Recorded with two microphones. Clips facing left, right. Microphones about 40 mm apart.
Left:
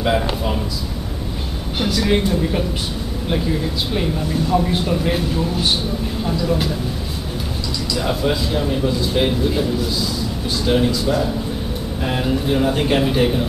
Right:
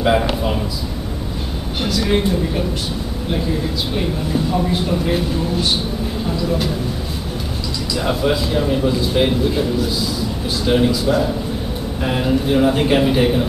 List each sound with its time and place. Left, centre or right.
0.0 s a man's voice: centre
1.8 s speech: centre
3.9 s speech: centre
7.9 s a man's voice: centre